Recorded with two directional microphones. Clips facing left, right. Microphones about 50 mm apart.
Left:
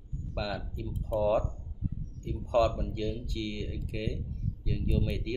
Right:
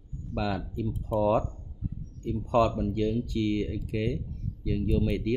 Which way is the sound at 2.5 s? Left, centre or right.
Right.